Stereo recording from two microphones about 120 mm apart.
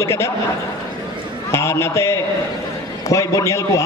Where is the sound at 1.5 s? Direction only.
25° left (ahead or behind).